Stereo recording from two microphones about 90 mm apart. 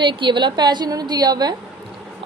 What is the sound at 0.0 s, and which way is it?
A woman's voice, 65° right (ahead or behind).